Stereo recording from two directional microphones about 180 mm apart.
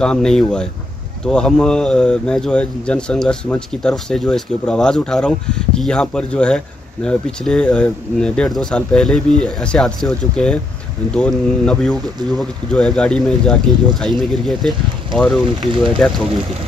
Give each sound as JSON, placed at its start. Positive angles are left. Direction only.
{"t": 0.0, "sound": "speech", "side_deg": 5}
{"t": 15.7, "sound": "speech", "side_deg": -25}